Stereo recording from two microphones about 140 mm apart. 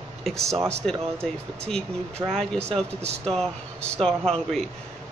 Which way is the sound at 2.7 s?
50° right (ahead or behind).